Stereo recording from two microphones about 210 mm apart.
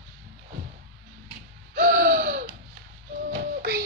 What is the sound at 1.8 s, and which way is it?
Gasp, 45° right (ahead or behind).